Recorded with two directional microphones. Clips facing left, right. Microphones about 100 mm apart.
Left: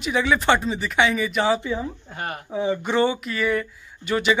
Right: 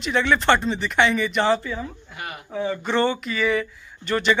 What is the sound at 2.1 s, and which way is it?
Speech, 40° left (ahead or behind).